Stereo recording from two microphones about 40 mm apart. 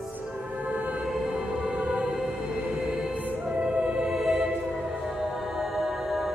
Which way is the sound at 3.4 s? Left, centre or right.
Right.